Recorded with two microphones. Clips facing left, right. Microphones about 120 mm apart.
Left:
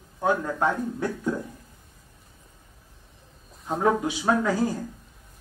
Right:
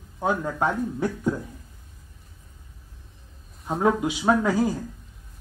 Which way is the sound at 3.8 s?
15° right (ahead or behind).